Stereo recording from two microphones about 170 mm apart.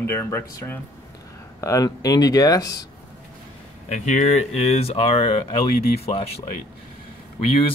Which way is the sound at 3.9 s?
45° left (ahead or behind).